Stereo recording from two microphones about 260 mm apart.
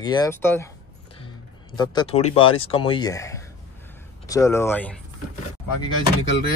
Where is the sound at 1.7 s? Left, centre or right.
Centre.